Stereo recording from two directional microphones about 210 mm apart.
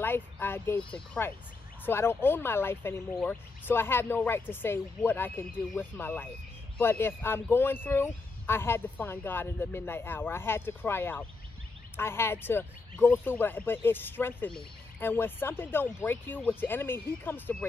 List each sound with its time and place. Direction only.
0.0 s speech: 10° left (ahead or behind)